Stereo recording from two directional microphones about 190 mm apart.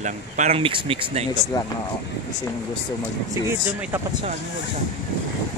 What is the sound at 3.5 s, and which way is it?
Speech, 10° right (ahead or behind).